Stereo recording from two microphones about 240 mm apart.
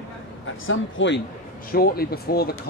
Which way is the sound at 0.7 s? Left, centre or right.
Left.